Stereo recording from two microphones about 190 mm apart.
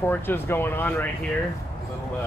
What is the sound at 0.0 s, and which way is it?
Speech, 10° left (ahead or behind).